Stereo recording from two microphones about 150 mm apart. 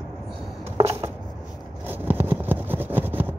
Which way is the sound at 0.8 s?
45° right (ahead or behind).